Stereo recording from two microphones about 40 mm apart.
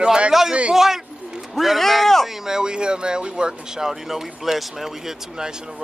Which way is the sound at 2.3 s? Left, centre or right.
Centre.